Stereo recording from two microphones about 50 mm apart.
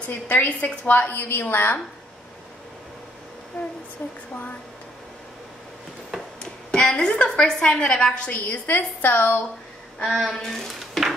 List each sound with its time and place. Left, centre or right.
0.1 s a woman's voice: left
4.0 s speech: left
6.4 s a sound: centre
7.2 s speech: centre
8.6 s a woman's voice: left
10.0 s speech: centre